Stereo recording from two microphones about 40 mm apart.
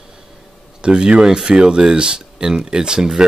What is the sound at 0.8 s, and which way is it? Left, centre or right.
Speech, right.